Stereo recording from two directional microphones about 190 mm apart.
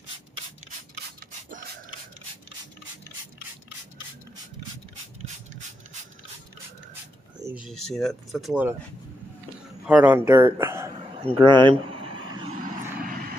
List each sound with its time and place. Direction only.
7.5 s speech: centre (ahead or behind)
9.8 s speech: 10° right (ahead or behind)
11.2 s a sound: 25° right (ahead or behind)
13.0 s vehicle: 50° right (ahead or behind)